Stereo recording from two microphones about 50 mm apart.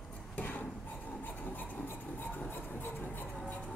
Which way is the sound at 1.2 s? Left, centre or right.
Left.